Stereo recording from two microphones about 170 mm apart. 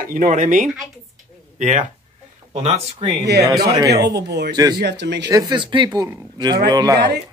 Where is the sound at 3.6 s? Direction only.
20° right (ahead or behind).